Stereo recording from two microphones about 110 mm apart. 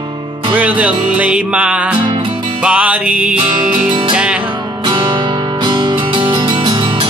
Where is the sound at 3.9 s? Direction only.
45° right (ahead or behind).